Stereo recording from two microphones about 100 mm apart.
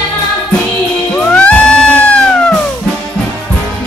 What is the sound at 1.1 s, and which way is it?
Music, 15° left (ahead or behind).